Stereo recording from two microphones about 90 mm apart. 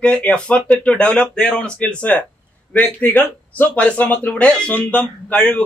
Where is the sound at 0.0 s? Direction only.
10° left (ahead or behind).